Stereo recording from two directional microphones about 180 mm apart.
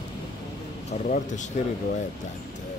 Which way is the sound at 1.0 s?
45° left (ahead or behind).